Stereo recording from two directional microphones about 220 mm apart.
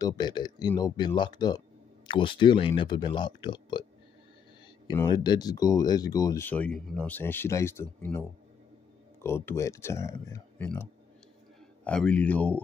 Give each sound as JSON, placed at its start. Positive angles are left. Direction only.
{"t": 0.0, "sound": "speech", "side_deg": 20}
{"t": 4.8, "sound": "speech", "side_deg": 20}